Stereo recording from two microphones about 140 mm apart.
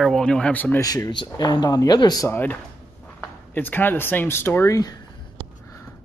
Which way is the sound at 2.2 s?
15° left (ahead or behind).